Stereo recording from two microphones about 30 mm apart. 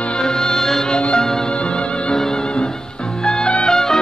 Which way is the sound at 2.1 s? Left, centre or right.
Centre.